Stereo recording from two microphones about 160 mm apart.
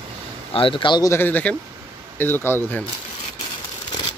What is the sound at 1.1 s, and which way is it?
Speech, 10° left (ahead or behind).